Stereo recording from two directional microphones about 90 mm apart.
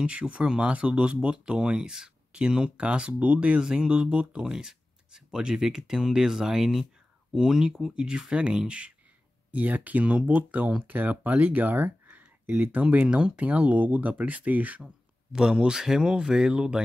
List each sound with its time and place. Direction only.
0.0 s speech: 10° right (ahead or behind)